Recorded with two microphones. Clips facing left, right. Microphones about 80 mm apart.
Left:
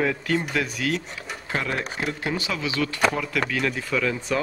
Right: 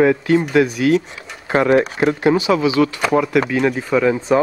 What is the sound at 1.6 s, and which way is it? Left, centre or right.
Speech, right.